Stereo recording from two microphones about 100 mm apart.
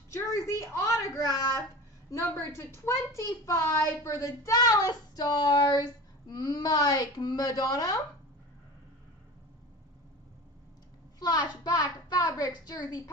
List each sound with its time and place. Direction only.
0.1 s a woman's voice: 30° left (ahead or behind)
11.1 s speech: 40° left (ahead or behind)